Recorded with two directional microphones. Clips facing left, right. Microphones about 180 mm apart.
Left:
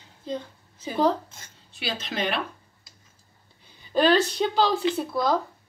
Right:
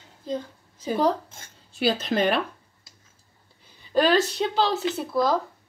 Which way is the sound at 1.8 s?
45° right (ahead or behind).